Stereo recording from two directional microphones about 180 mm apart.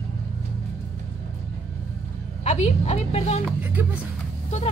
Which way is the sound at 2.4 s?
40° left (ahead or behind).